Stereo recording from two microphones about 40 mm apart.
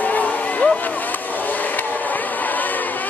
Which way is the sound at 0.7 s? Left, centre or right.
Left.